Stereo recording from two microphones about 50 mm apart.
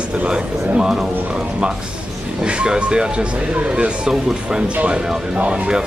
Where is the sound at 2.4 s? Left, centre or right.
Centre.